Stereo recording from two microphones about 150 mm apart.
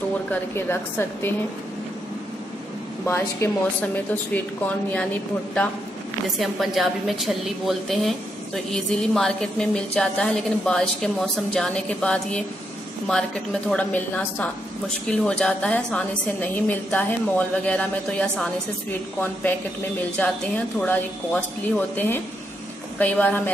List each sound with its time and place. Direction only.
0.3 s a woman's voice: 15° left (ahead or behind)
3.1 s a woman's voice: 15° left (ahead or behind)
6.3 s a woman's voice: centre (ahead or behind)
20.2 s a woman's voice: 10° left (ahead or behind)